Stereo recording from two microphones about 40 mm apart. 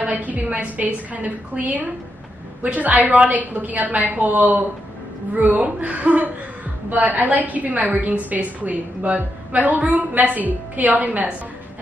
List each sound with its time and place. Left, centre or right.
0.0 s a woman's voice: right
5.3 s a woman's voice: right